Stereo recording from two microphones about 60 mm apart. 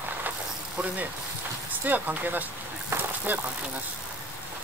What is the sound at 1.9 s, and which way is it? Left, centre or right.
Speech, right.